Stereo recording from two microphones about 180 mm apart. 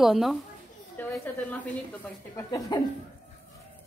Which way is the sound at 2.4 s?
20° left (ahead or behind).